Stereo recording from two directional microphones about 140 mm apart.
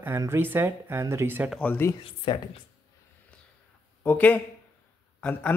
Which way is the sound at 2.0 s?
35° left (ahead or behind).